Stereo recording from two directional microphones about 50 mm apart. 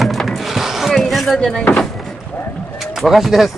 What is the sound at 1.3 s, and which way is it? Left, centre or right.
Speech, centre.